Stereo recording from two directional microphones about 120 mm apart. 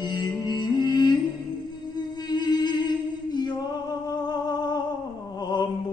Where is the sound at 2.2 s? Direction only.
35° left (ahead or behind).